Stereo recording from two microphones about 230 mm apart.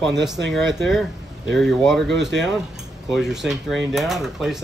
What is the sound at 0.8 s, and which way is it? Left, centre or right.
Speech, centre.